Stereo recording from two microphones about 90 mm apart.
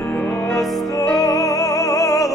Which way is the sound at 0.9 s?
45° left (ahead or behind).